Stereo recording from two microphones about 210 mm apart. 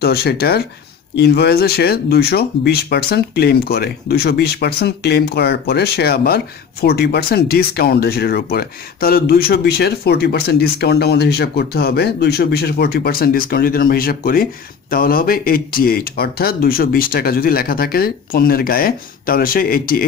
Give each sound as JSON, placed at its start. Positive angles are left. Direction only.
{"t": 0.0, "sound": "speech", "side_deg": 50}